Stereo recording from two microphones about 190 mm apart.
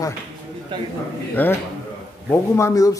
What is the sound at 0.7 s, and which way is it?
Speech, 25° right (ahead or behind).